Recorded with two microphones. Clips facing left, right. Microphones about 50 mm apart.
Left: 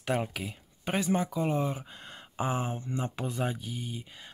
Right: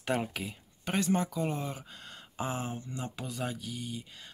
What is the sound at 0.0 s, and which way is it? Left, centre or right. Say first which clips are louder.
Speech: left 1 dB; centre.